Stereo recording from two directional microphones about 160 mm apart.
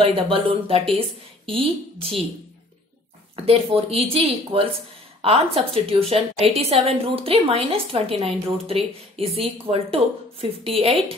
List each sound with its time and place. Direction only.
0.0 s a woman's voice: 35° right (ahead or behind)
3.4 s a woman's voice: 35° right (ahead or behind)